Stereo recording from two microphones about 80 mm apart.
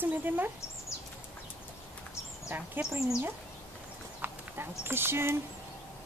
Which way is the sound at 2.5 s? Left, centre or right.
Right.